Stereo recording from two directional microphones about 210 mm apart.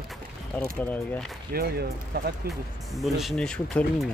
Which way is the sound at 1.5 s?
45° right (ahead or behind).